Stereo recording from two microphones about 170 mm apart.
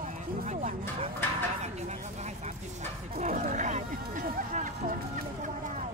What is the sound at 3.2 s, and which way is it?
Speech, 45° right (ahead or behind).